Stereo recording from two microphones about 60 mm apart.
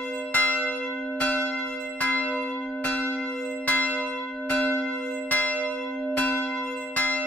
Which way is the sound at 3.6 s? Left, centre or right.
Left.